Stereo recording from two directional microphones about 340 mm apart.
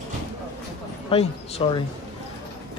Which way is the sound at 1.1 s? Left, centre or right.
Centre.